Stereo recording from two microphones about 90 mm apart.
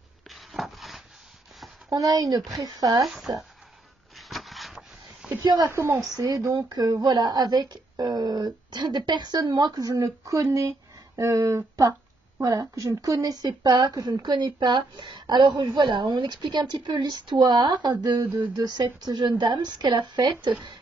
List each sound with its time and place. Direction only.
0.3 s rub: centre (ahead or behind)
1.9 s a woman's voice: 40° right (ahead or behind)
3.0 s speech: centre (ahead or behind)
4.3 s wood: centre (ahead or behind)
5.4 s a woman's voice: 55° right (ahead or behind)
5.7 s speech: 30° right (ahead or behind)
6.2 s a woman's voice: 45° right (ahead or behind)
18.2 s a sound: 20° right (ahead or behind)
18.6 s a woman's voice: 50° right (ahead or behind)